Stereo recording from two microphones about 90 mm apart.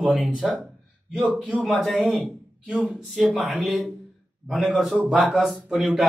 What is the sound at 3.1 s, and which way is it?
A man's voice, centre (ahead or behind).